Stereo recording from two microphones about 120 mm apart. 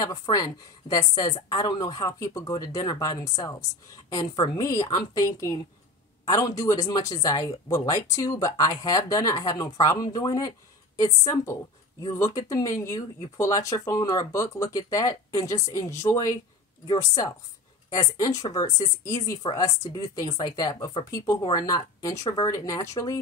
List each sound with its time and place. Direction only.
0.0 s a woman's voice: 30° left (ahead or behind)
12.1 s a woman's voice: 25° left (ahead or behind)